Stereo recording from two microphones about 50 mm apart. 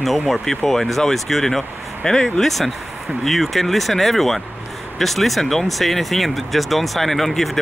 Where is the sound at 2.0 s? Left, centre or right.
Centre.